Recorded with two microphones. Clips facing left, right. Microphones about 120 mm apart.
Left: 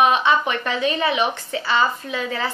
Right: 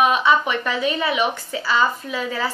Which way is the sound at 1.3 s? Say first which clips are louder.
Even; 10° right (ahead or behind).